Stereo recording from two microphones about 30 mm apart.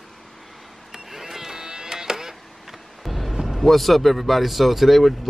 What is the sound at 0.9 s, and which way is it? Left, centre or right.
Cattle, centre.